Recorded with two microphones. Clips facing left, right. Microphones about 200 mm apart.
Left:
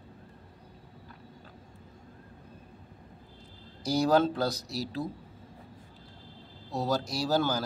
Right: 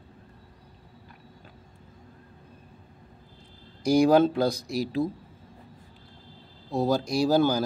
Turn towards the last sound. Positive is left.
turn(degrees=-15)  # may be behind; listen again after turning